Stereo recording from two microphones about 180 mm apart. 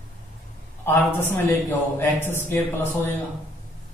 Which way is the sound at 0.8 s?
10° left (ahead or behind).